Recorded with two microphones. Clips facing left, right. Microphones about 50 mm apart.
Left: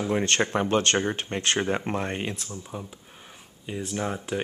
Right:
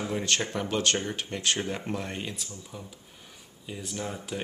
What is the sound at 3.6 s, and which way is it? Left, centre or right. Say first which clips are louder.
Speech: left 6 dB; left.